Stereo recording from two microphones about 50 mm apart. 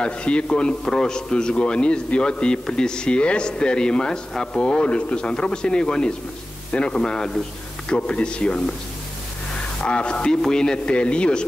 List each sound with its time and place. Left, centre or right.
0.0 s a man's voice: left
9.8 s speech: left